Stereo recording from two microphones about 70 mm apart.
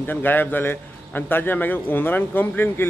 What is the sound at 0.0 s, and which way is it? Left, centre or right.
A man's voice, left.